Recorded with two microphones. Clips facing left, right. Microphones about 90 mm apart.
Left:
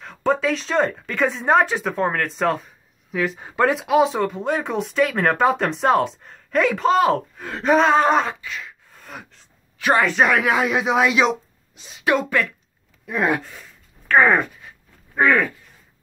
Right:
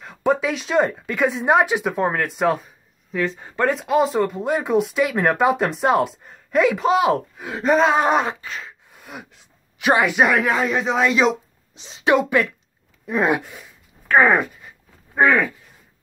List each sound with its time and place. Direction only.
0.0 s speech: 10° right (ahead or behind)
3.1 s speech: 5° left (ahead or behind)
7.9 s speech: 15° right (ahead or behind)
8.4 s a sound: 35° right (ahead or behind)
8.9 s a man's voice: 10° right (ahead or behind); by 11.3 s 5° left (ahead or behind)
11.7 s speech: 25° right (ahead or behind)